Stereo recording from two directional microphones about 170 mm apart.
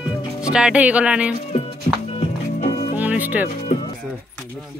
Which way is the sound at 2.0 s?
35° left (ahead or behind).